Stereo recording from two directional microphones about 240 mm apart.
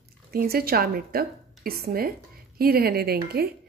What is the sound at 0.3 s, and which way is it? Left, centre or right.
Speech, right.